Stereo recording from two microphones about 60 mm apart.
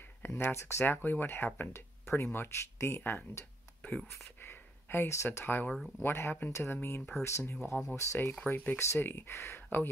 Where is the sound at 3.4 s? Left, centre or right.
Left.